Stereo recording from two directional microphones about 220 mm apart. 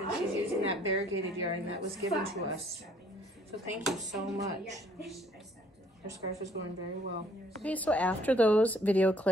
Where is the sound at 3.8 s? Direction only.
Centre (ahead or behind).